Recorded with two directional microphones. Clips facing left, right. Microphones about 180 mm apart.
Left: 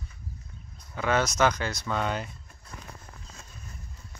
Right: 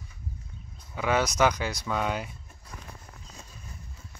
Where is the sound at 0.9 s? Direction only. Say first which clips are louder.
Even; 10° right (ahead or behind).